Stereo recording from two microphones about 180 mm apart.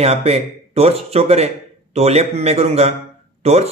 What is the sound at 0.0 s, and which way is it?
A man's voice, 35° right (ahead or behind).